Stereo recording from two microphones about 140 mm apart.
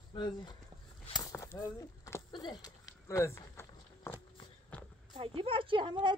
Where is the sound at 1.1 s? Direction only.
25° left (ahead or behind).